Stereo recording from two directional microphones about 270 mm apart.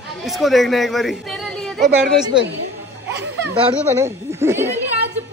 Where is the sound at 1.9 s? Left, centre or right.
Right.